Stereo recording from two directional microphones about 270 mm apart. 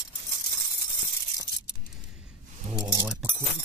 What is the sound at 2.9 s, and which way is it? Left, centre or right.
Speech, centre.